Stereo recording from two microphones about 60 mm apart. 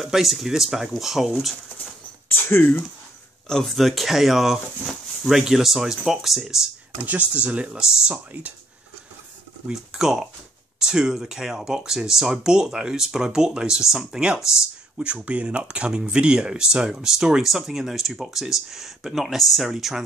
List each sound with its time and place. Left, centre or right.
0.0 s speech: centre
2.2 s a sound: left
3.4 s speech: centre
7.0 s speech: right
9.7 s speech: centre
15.1 s speech: right; by 20.0 s centre